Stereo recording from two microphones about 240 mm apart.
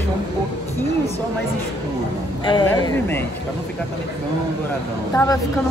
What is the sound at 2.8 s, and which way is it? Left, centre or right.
Speech, centre.